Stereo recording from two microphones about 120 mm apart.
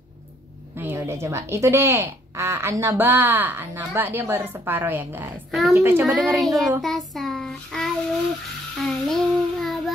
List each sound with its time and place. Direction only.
0.7 s a woman's voice: 20° right (ahead or behind)
6.3 s child singing: centre (ahead or behind)